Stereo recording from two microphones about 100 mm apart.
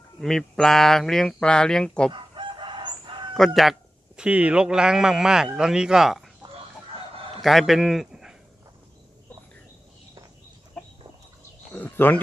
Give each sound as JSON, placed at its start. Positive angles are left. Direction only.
{"t": 0.2, "sound": "speech", "side_deg": 5}
{"t": 2.1, "sound": "chicken", "side_deg": -55}
{"t": 3.3, "sound": "speech", "side_deg": 0}
{"t": 4.2, "sound": "a man's voice", "side_deg": -10}
{"t": 7.4, "sound": "a man's voice", "side_deg": 0}
{"t": 11.7, "sound": "a sound", "side_deg": 15}